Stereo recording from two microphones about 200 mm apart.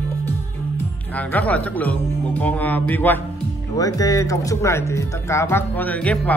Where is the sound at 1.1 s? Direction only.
10° left (ahead or behind).